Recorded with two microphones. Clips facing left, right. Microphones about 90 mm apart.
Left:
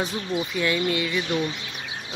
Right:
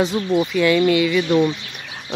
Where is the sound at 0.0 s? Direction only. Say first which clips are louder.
Right 8 dB; 90° right.